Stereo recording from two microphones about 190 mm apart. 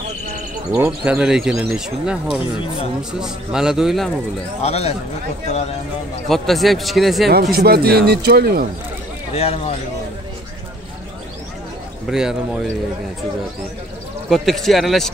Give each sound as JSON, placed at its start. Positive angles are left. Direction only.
{"t": 0.8, "sound": "speech", "side_deg": -5}
{"t": 4.6, "sound": "speech", "side_deg": 35}
{"t": 6.2, "sound": "speech", "side_deg": 0}
{"t": 7.5, "sound": "speech", "side_deg": -55}
{"t": 9.3, "sound": "speech", "side_deg": 30}
{"t": 12.1, "sound": "speech", "side_deg": -5}
{"t": 14.3, "sound": "speech", "side_deg": 0}